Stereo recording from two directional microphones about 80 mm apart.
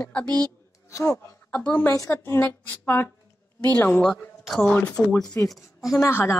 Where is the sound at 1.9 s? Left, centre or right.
Left.